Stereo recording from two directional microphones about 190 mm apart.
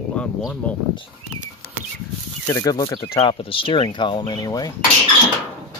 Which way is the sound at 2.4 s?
20° left (ahead or behind).